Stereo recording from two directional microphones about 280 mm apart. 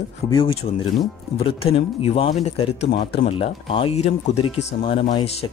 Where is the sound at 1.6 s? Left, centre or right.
Left.